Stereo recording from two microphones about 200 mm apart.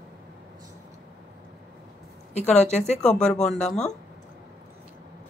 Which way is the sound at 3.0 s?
5° left (ahead or behind).